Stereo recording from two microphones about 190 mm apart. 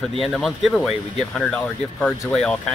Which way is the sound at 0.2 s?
Centre (ahead or behind).